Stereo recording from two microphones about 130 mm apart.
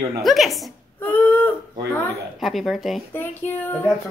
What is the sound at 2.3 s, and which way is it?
Speech, centre (ahead or behind).